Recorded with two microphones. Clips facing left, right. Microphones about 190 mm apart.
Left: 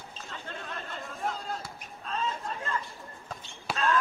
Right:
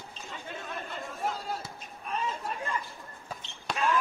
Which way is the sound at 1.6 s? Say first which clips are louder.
Even; 20° right (ahead or behind).